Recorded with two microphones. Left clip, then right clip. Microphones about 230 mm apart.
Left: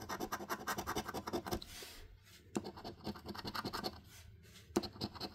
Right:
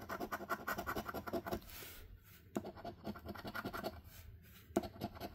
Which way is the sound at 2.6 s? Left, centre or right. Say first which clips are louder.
Left 1 dB; centre.